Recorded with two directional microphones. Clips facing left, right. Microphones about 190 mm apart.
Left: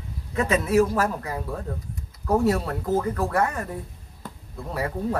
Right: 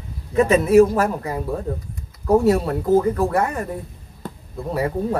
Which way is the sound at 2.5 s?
15° right (ahead or behind).